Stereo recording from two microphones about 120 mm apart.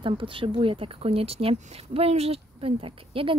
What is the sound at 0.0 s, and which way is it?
Speech, 45° right (ahead or behind).